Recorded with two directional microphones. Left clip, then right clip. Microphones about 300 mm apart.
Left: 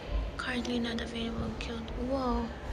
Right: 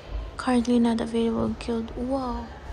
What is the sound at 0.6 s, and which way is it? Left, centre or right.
Speech, centre.